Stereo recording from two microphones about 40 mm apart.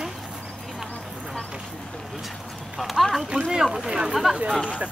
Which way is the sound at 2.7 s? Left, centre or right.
Centre.